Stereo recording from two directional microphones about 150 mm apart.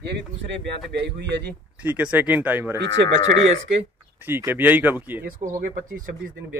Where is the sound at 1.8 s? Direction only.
10° right (ahead or behind).